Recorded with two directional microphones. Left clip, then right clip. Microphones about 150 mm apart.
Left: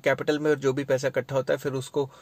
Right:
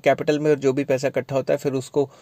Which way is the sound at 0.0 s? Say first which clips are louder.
Right 5 dB; 25° right (ahead or behind).